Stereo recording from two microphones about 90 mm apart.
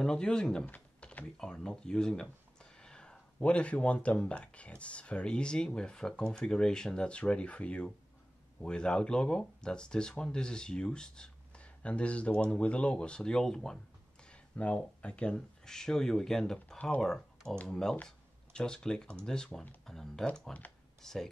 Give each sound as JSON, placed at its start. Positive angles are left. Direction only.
{"t": 0.0, "sound": "speech", "side_deg": 10}
{"t": 0.7, "sound": "typing", "side_deg": 20}
{"t": 1.4, "sound": "speech", "side_deg": 10}